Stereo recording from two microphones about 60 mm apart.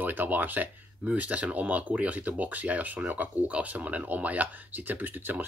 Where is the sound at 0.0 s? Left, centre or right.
Right.